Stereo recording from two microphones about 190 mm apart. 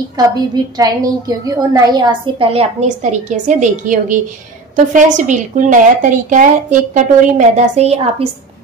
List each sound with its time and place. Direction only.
0.2 s a woman's voice: 20° right (ahead or behind)
1.4 s a woman's voice: 20° right (ahead or behind)